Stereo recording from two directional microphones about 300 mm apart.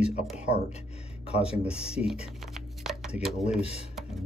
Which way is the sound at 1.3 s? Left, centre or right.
Centre.